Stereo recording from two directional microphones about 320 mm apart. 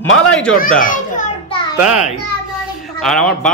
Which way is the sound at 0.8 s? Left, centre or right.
Left.